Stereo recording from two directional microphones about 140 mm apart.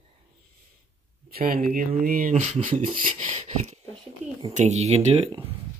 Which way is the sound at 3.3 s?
55° right (ahead or behind).